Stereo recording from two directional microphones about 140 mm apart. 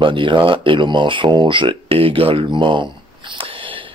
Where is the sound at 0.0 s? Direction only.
35° right (ahead or behind).